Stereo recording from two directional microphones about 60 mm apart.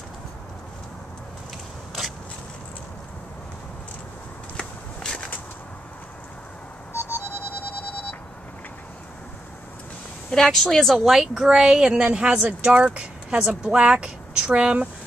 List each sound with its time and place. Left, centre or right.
4.6 s walk: centre
10.3 s a woman's voice: centre